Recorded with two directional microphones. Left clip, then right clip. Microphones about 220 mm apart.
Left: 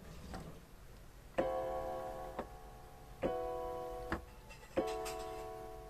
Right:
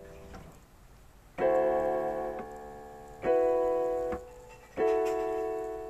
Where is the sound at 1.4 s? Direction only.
40° right (ahead or behind).